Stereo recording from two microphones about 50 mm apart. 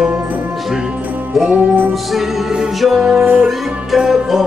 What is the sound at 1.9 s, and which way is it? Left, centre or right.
Music, centre.